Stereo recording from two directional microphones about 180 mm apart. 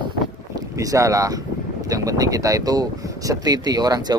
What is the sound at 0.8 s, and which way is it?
Speech, 20° right (ahead or behind).